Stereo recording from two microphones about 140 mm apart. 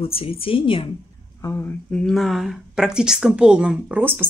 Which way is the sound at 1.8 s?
5° left (ahead or behind).